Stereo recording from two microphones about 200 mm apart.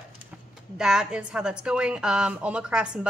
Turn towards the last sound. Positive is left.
turn(degrees=-5)  # may be behind; listen again after turning